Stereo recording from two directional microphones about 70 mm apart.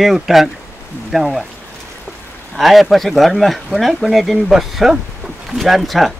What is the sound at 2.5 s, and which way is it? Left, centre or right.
Speech, centre.